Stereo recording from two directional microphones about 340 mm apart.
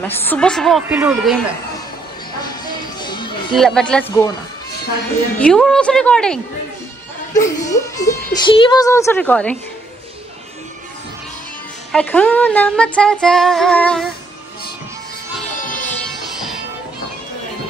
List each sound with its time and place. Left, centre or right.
0.0 s music: centre
2.6 s music: centre
3.5 s music: centre
5.4 s music: centre
7.3 s speech: centre
11.9 s music: centre
15.6 s music: left